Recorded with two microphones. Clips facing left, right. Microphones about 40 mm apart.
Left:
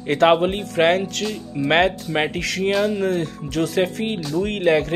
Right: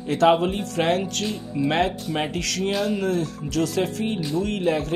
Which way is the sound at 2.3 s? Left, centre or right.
Left.